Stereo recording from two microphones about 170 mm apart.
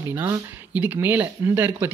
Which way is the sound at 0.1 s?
10° right (ahead or behind).